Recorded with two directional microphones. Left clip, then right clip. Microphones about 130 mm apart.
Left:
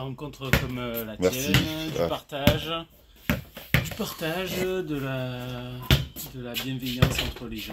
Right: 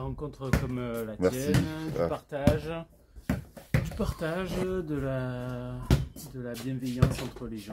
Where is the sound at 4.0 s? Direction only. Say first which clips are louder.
Left 3 dB; 10° right (ahead or behind).